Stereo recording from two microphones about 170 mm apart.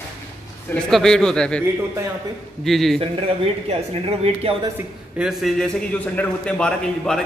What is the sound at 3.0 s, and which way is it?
Speech, 35° right (ahead or behind).